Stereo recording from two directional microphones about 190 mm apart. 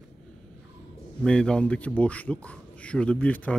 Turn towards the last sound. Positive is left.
turn(degrees=5)  # may be behind; listen again after turning